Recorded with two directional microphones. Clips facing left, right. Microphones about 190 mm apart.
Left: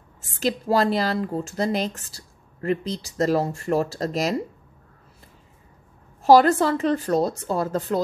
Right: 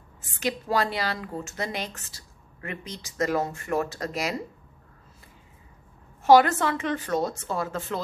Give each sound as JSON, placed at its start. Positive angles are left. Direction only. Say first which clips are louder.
{"t": 0.4, "sound": "speech", "louder": "left 5 dB", "side_deg": 40}
{"t": 6.2, "sound": "speech", "louder": "left 3 dB", "side_deg": 35}